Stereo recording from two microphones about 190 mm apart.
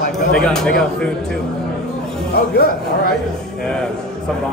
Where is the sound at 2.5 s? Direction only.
55° left (ahead or behind).